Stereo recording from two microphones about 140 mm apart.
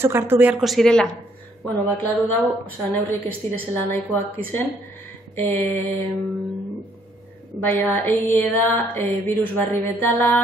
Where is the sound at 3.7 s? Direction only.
15° left (ahead or behind).